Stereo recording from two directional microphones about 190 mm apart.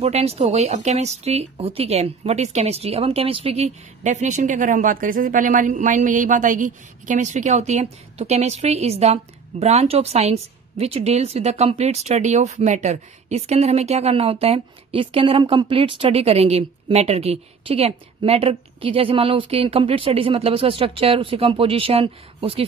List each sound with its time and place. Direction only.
0.0 s speech: 35° right (ahead or behind)